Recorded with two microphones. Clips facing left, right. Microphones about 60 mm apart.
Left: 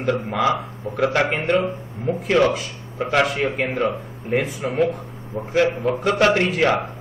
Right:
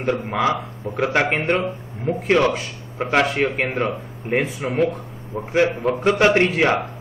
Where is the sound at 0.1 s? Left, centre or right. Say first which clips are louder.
Even; right.